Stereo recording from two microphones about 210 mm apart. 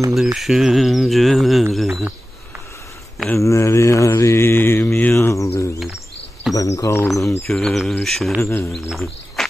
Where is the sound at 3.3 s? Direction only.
15° left (ahead or behind).